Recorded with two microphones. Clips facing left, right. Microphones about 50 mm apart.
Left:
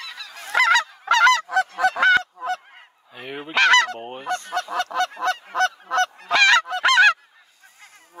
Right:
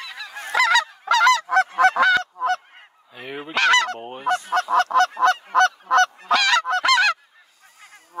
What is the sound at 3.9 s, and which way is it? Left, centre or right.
Goose, centre.